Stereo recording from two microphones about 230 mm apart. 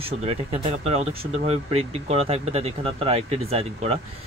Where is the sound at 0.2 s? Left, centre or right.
Right.